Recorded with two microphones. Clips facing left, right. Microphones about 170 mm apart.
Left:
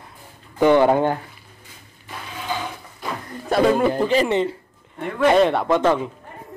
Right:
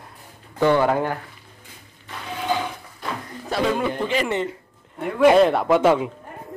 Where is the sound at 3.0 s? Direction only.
Centre (ahead or behind).